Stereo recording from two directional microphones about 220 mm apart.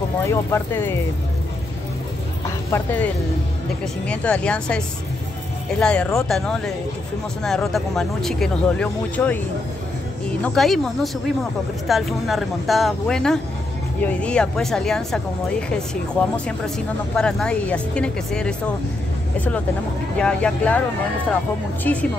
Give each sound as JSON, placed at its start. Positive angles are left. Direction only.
{"t": 0.2, "sound": "speech", "side_deg": 10}
{"t": 2.7, "sound": "speech", "side_deg": 10}
{"t": 10.4, "sound": "speech", "side_deg": 0}
{"t": 20.2, "sound": "speech", "side_deg": 5}